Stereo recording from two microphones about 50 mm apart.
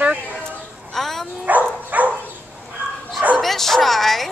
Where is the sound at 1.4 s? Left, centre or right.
Right.